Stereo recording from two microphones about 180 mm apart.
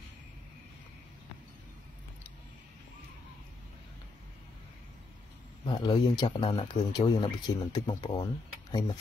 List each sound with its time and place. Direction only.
5.7 s speech: 25° left (ahead or behind)